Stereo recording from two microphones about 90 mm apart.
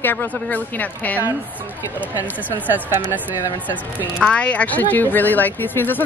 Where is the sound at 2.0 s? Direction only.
20° right (ahead or behind).